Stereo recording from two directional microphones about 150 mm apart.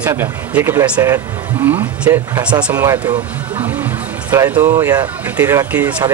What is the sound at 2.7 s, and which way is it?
Speech, 20° right (ahead or behind).